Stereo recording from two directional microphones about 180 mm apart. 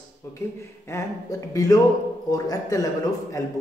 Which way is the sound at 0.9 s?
15° left (ahead or behind).